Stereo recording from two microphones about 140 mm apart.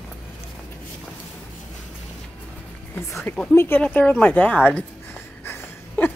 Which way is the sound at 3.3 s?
15° left (ahead or behind).